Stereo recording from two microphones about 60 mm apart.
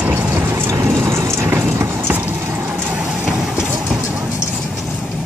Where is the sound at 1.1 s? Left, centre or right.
Right.